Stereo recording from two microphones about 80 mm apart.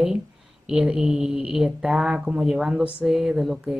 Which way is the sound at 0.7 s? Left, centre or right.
Centre.